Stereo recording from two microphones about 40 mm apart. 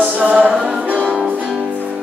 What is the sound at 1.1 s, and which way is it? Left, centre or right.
Music, right.